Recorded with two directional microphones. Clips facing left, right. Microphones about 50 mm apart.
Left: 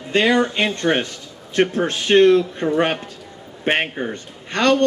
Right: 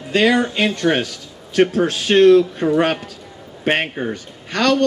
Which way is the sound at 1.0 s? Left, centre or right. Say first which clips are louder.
Right 2 dB; left.